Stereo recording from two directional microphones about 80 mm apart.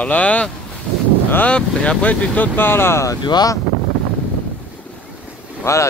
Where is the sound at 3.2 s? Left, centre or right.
Left.